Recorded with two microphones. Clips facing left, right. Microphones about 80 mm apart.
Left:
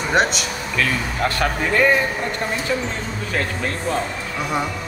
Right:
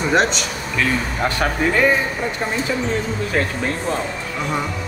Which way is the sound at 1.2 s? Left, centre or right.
Centre.